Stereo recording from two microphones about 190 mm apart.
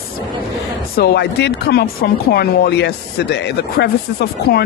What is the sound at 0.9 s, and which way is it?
Speech, 60° left (ahead or behind).